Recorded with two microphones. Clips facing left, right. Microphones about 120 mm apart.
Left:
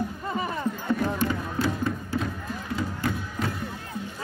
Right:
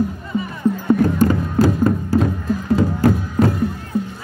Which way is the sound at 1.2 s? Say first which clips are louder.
Right 10 dB; 45° right (ahead or behind).